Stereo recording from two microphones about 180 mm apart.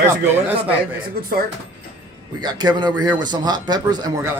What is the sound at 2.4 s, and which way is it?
A man's voice, 25° right (ahead or behind).